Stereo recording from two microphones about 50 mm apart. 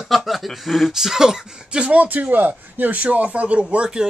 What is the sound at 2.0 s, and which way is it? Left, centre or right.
Speech, right.